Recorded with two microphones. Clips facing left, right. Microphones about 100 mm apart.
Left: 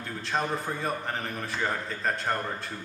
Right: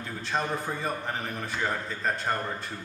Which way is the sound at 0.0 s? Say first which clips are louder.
Even; centre (ahead or behind).